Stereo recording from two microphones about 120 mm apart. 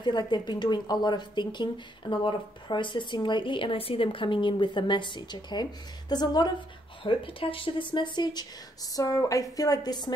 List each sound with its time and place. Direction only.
0.0 s speech: 40° left (ahead or behind)
7.0 s speech: 50° left (ahead or behind)